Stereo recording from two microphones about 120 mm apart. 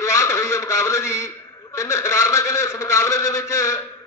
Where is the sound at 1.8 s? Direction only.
25° left (ahead or behind).